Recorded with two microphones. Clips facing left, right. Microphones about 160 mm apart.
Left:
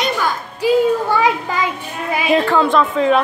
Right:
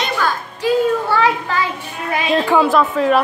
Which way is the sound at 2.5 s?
5° right (ahead or behind).